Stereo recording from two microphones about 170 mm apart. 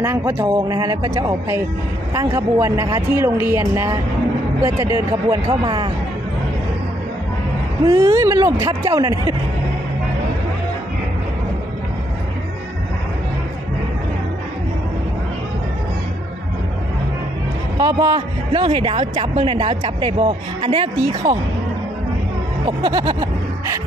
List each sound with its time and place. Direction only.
0.0 s speech: 15° right (ahead or behind)
7.8 s speech: 20° right (ahead or behind)
17.7 s speech: 20° right (ahead or behind)
19.1 s speech: 40° right (ahead or behind)
19.5 s speech: 25° right (ahead or behind)
22.7 s speech: 25° right (ahead or behind)